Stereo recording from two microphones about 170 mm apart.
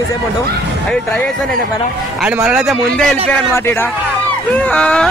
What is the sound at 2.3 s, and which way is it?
Speech, 5° right (ahead or behind).